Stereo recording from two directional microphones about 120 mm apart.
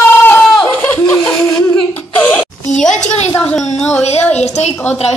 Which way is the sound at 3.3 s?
15° left (ahead or behind).